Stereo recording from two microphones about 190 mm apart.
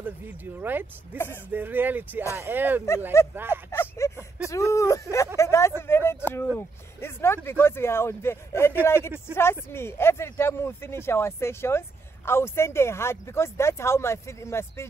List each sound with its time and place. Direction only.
0.6 s speech: 10° right (ahead or behind)
1.1 s speech: 10° left (ahead or behind)
1.5 s speech: 10° right (ahead or behind)
3.2 s speech: 15° left (ahead or behind)